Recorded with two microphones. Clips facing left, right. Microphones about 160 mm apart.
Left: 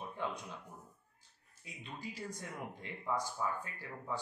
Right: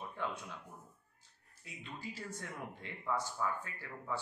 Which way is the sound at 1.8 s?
15° left (ahead or behind).